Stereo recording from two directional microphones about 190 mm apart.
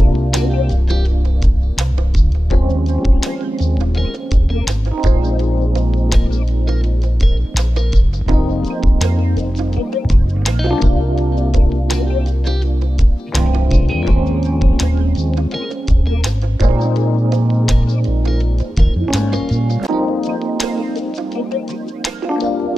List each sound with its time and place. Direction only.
0.1 s music: centre (ahead or behind)
2.7 s music: centre (ahead or behind)
8.3 s music: centre (ahead or behind)